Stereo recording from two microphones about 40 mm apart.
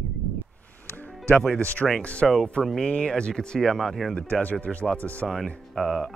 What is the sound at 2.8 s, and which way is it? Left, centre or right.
Speech, left.